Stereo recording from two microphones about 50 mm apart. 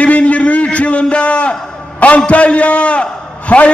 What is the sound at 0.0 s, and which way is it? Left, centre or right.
A man's voice, left.